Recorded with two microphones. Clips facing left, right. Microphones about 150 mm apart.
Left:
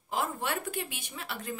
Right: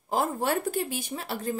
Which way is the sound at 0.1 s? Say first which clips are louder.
Right 6 dB; 40° right (ahead or behind).